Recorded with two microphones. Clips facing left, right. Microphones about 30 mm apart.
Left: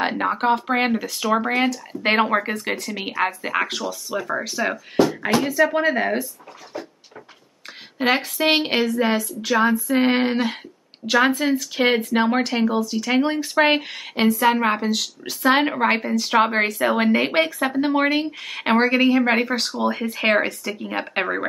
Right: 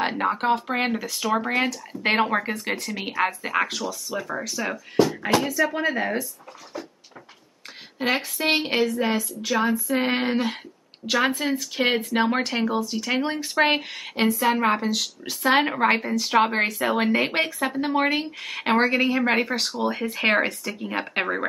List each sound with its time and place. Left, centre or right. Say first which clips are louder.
0.0 s a woman's voice: left 2 dB; centre
8.0 s a woman's voice: left 4 dB; centre
8.5 s speech: left 3 dB; left
9.4 s a woman's voice: left 5 dB; centre